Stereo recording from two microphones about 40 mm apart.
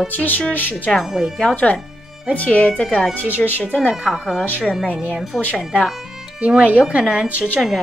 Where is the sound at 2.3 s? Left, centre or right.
Left.